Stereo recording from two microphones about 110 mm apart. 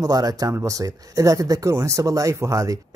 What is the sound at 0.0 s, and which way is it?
Speech, 35° right (ahead or behind).